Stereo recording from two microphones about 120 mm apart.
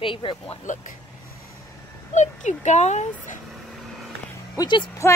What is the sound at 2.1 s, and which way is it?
Speech, 80° left.